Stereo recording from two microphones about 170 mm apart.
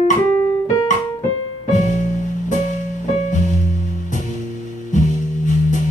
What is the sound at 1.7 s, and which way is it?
Music, 45° left (ahead or behind).